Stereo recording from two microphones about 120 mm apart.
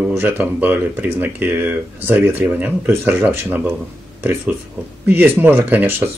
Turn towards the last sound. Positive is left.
turn(degrees=-15)  # may be behind; listen again after turning